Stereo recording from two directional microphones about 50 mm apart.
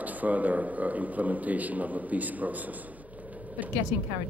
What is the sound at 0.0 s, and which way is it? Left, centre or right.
Speech, right.